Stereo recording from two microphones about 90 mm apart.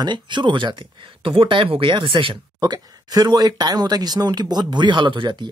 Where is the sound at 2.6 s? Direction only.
45° right (ahead or behind).